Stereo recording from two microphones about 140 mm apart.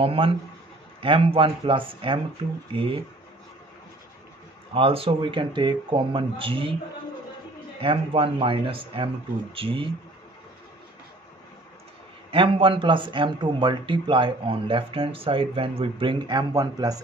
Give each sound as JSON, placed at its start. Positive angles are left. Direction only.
{"t": 0.0, "sound": "a man's voice", "side_deg": -40}
{"t": 4.7, "sound": "a man's voice", "side_deg": -40}
{"t": 7.8, "sound": "a man's voice", "side_deg": -40}
{"t": 12.3, "sound": "a man's voice", "side_deg": -40}